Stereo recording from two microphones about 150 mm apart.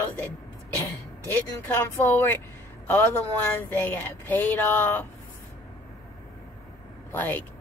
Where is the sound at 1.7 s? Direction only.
15° left (ahead or behind).